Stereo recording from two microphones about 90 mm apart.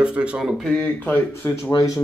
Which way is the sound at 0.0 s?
15° right (ahead or behind).